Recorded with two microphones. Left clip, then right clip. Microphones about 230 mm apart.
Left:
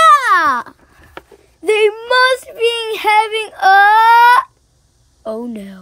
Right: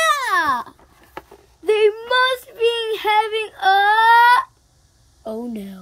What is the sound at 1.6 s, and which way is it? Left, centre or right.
A woman's voice, left.